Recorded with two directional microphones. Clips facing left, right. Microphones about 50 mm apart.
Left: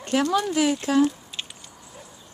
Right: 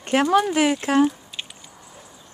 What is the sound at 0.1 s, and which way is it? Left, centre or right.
Speech, right.